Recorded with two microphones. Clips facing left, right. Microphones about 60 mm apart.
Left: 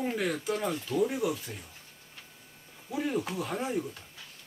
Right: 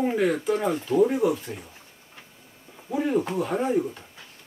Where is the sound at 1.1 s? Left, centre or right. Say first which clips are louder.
Right 7 dB; centre.